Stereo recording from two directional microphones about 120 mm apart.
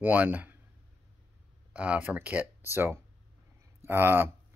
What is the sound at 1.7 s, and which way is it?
Speech, 10° right (ahead or behind).